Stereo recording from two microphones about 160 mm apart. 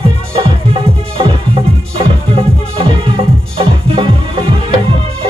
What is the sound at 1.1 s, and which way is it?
Music, 35° right (ahead or behind).